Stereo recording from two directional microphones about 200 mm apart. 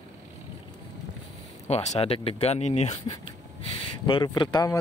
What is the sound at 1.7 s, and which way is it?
Speech, 30° left (ahead or behind).